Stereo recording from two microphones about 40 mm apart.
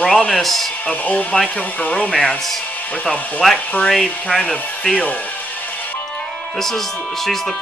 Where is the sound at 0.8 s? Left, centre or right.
Left.